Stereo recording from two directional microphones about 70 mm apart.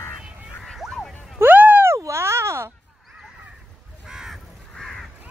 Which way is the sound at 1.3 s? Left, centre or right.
Right.